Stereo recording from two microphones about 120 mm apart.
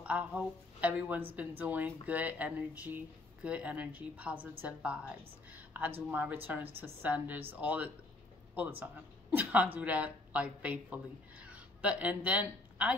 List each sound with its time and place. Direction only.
0.0 s a woman's voice: 10° right (ahead or behind)